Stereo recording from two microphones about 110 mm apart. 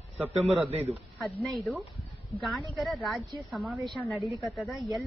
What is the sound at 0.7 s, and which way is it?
Speech, 70° right (ahead or behind).